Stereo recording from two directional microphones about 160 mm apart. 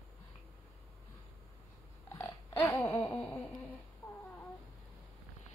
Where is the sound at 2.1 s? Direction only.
15° left (ahead or behind).